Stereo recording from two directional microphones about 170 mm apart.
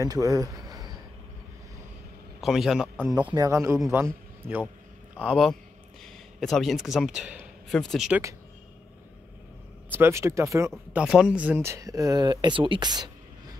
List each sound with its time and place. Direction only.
0.0 s a sound: 20° right (ahead or behind)
2.4 s a man's voice: centre (ahead or behind)
3.3 s a man's voice: 15° right (ahead or behind); by 8.2 s centre (ahead or behind)
9.8 s speech: 15° right (ahead or behind)
10.7 s speech: 5° right (ahead or behind); by 13.1 s 25° right (ahead or behind)